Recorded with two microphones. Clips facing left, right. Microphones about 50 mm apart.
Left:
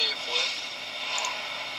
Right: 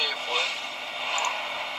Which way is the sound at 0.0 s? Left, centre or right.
Centre.